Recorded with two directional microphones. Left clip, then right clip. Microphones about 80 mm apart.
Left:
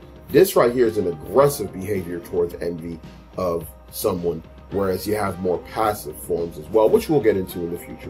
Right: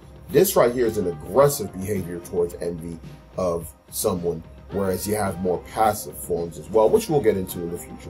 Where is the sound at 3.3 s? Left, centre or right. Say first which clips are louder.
Left 1 dB; left.